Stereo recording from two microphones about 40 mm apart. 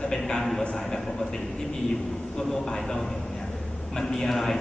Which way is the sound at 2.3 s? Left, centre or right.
Centre.